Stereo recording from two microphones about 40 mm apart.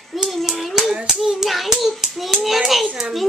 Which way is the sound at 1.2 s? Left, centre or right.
Centre.